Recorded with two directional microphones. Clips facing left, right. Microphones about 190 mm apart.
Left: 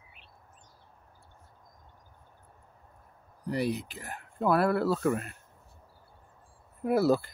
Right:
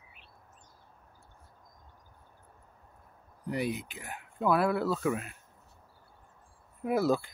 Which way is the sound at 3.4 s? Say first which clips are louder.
Left 2 dB; centre (ahead or behind).